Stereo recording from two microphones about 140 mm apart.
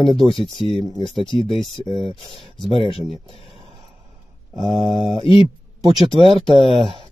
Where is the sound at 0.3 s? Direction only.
40° left (ahead or behind).